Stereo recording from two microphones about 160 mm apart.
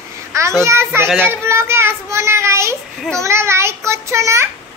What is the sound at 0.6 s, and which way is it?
A child's voice, 15° right (ahead or behind).